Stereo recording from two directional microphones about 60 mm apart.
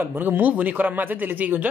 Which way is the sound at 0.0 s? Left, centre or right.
Right.